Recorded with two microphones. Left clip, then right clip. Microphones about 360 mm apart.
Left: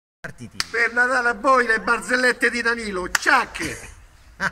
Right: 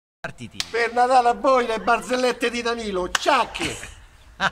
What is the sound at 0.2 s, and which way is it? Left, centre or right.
Finger snapping, centre.